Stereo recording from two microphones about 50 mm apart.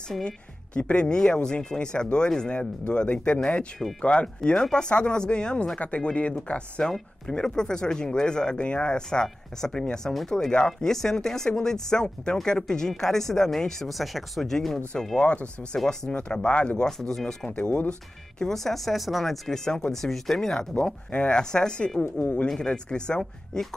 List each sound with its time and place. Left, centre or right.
0.7 s speech: left
4.5 s speech: centre
6.8 s speech: centre
15.1 s speech: left
15.8 s speech: centre
16.1 s speech: left
16.8 s speech: centre
17.6 s speech: left
18.4 s speech: centre
22.0 s speech: left
22.6 s speech: centre